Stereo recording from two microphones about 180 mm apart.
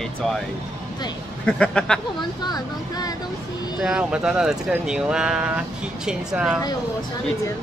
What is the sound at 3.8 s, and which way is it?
Speech, 5° right (ahead or behind).